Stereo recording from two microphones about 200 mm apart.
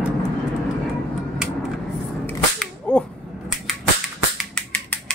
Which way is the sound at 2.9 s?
5° left (ahead or behind).